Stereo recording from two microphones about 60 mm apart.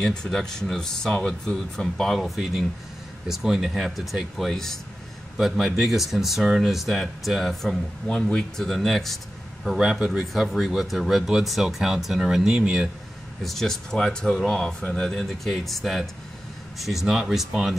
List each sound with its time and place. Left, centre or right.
0.0 s speech: centre
5.8 s speech: centre
8.1 s speech: centre
9.7 s speech: centre
13.4 s speech: centre